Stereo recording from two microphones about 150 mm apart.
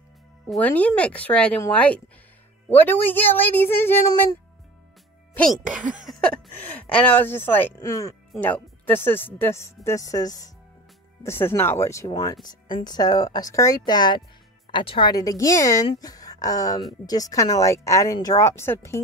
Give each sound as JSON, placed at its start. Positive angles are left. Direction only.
{"t": 0.6, "sound": "speech", "side_deg": 10}
{"t": 6.9, "sound": "speech", "side_deg": 10}